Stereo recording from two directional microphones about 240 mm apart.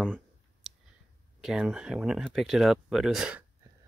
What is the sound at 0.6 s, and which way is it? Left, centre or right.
Clicking, centre.